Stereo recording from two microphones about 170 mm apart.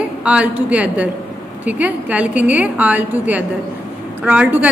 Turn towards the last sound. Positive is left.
turn(degrees=-10)  # may be behind; listen again after turning